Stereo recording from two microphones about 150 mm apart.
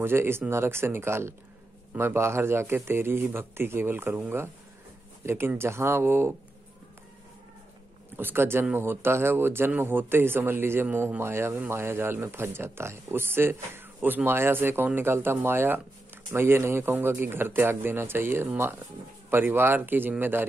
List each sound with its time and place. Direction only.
0.0 s speech: 15° right (ahead or behind)
8.2 s speech: 15° right (ahead or behind)